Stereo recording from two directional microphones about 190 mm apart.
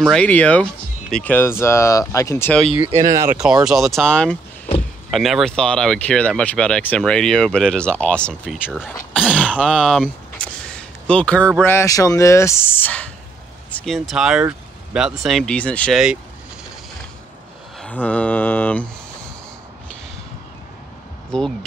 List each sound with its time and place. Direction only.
0.0 s speech: 5° left (ahead or behind)
3.0 s speech: 15° right (ahead or behind)
3.6 s speech: centre (ahead or behind)
17.7 s speech: 5° left (ahead or behind)
21.3 s speech: 5° left (ahead or behind)